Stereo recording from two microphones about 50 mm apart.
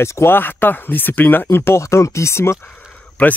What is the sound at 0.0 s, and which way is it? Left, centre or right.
Speech, left.